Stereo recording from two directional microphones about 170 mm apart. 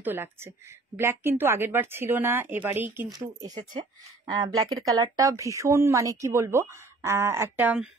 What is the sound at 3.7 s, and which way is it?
Speech, 25° right (ahead or behind).